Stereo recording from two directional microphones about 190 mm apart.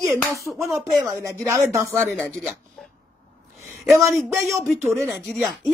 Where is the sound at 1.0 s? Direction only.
15° right (ahead or behind).